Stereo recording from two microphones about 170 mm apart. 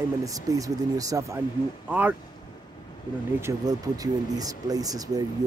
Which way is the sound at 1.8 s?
10° right (ahead or behind).